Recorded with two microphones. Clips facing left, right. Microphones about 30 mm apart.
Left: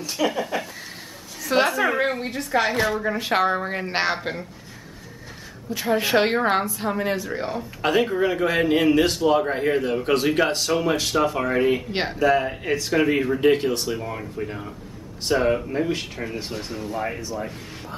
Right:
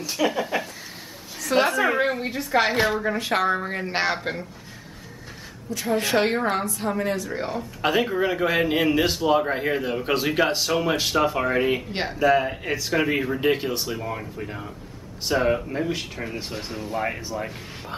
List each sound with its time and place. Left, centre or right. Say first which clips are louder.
0.0 s speech: even; centre
1.4 s a sound: left 1 dB; centre
1.7 s a woman's voice: even; centre
3.3 s speech: left 3 dB; centre
5.7 s a woman's voice: left 2 dB; centre
7.3 s speech: left 1 dB; centre
11.9 s speech: left 2 dB; centre
12.2 s speech: right 1 dB; centre